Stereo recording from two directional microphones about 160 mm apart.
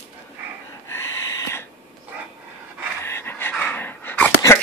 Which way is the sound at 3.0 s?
15° left (ahead or behind).